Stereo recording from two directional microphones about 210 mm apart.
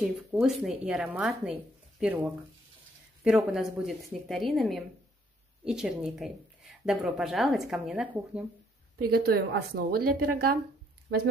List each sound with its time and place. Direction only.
0.0 s speech: 5° right (ahead or behind)
9.1 s a woman's voice: 45° right (ahead or behind)